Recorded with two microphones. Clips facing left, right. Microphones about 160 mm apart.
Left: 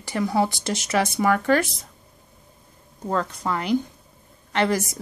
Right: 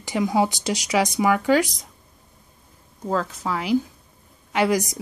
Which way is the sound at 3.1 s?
5° right (ahead or behind).